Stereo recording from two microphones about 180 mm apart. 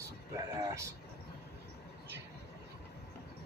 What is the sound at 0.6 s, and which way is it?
Speech, 15° right (ahead or behind).